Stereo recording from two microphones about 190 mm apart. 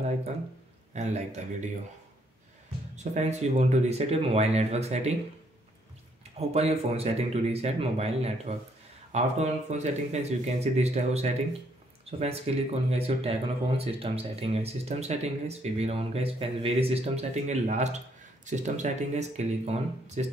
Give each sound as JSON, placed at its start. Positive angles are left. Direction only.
{"t": 0.9, "sound": "speech", "side_deg": -35}
{"t": 3.0, "sound": "speech", "side_deg": -35}
{"t": 6.3, "sound": "speech", "side_deg": -35}